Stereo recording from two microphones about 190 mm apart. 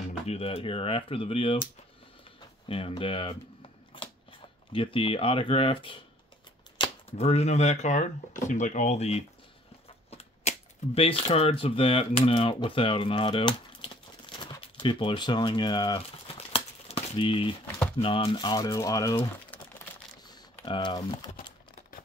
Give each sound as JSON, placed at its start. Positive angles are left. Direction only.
{"t": 0.3, "sound": "speech", "side_deg": 30}
{"t": 2.7, "sound": "speech", "side_deg": 30}
{"t": 4.7, "sound": "speech", "side_deg": 30}
{"t": 10.4, "sound": "typewriter", "side_deg": 35}
{"t": 11.0, "sound": "speech", "side_deg": 30}
{"t": 20.6, "sound": "speech", "side_deg": 25}